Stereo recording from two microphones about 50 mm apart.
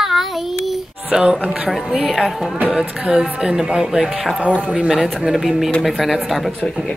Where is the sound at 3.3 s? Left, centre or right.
Centre.